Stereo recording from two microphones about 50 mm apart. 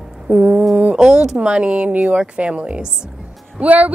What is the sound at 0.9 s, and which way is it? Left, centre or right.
A woman's voice, centre.